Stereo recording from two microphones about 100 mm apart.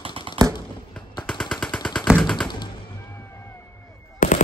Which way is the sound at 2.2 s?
5° left (ahead or behind).